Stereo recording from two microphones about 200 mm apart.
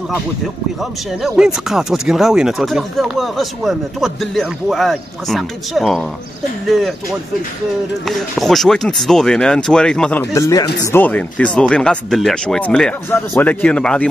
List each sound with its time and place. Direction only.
1.2 s speech: centre (ahead or behind)
8.1 s speech: centre (ahead or behind)
10.3 s a man's voice: 15° left (ahead or behind)